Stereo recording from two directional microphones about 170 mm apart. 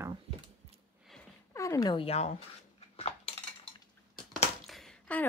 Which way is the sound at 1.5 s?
20° left (ahead or behind).